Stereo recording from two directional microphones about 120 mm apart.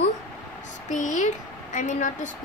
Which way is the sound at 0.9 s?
90° left.